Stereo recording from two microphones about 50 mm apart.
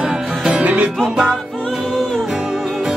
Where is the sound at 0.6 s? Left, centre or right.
Right.